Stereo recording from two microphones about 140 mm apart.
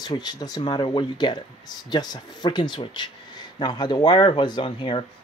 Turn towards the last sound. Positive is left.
turn(degrees=35)  # may be behind; listen again after turning